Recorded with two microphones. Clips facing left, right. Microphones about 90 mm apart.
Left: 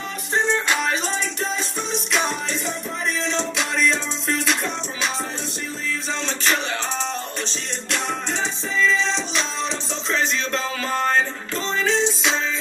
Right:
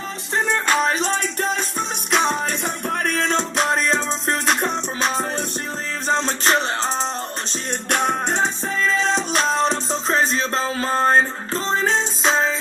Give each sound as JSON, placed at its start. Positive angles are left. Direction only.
{"t": 0.7, "sound": "music", "side_deg": -40}
{"t": 7.9, "sound": "music", "side_deg": -50}